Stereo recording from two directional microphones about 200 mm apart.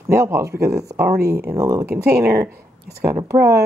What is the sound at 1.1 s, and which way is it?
Speech, 50° right (ahead or behind).